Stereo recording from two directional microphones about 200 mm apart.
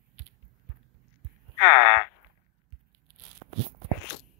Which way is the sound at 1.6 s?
35° left (ahead or behind).